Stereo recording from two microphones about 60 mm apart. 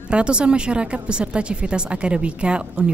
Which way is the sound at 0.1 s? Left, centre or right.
Centre.